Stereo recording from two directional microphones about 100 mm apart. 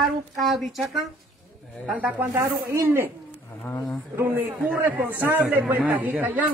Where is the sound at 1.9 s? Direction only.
15° right (ahead or behind).